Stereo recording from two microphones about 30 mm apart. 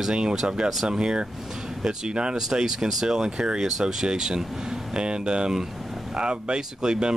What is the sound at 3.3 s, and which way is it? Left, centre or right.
Speech, right.